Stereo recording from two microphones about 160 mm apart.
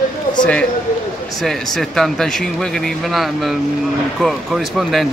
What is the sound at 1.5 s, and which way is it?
Speech, centre (ahead or behind).